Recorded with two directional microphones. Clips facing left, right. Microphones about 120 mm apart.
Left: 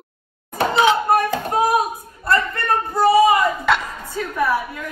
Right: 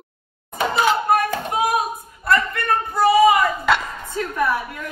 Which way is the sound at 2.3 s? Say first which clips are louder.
Even; 25° left (ahead or behind).